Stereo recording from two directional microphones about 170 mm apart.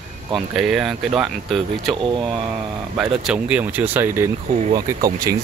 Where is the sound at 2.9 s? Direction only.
5° right (ahead or behind).